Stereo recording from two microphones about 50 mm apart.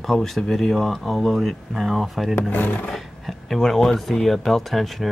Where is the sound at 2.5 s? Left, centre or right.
Left.